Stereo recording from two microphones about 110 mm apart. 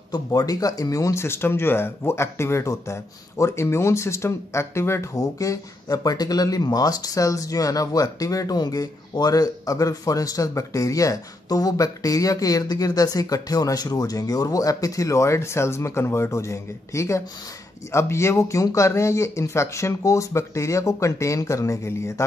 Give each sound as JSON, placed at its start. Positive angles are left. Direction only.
{"t": 0.1, "sound": "speech", "side_deg": 35}